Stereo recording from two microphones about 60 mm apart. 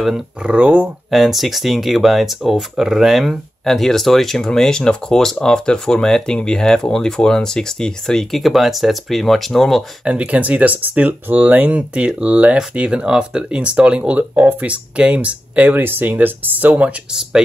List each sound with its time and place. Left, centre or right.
0.4 s speech: right
1.1 s speech: centre
10.0 s speech: right